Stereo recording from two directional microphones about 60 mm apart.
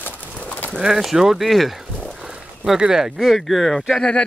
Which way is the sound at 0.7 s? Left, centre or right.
Centre.